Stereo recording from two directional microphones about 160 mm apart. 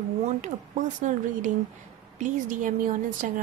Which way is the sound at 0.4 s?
50° right (ahead or behind).